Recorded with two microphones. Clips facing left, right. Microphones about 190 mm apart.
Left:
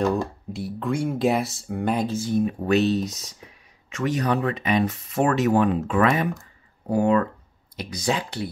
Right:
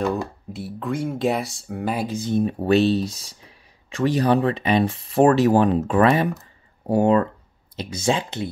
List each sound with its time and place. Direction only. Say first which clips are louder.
0.0 s speech: left 1 dB; 5° right (ahead or behind)
2.1 s speech: right 1 dB; 20° right (ahead or behind)
2.4 s speech: right 4 dB; 30° right (ahead or behind)